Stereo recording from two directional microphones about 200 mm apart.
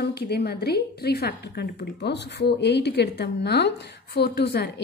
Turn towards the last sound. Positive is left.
turn(degrees=55)  # may be behind; listen again after turning